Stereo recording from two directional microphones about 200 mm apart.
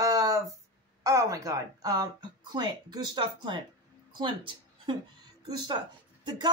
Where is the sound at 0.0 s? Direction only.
15° right (ahead or behind).